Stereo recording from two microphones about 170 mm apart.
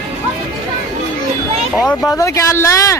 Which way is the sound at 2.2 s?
15° left (ahead or behind).